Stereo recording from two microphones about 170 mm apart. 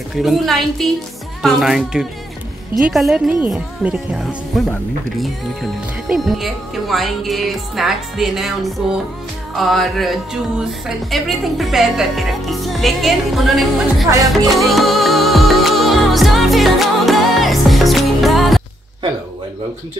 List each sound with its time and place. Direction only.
0.1 s speech: centre (ahead or behind)
14.1 s music: 20° right (ahead or behind)
14.5 s music: centre (ahead or behind)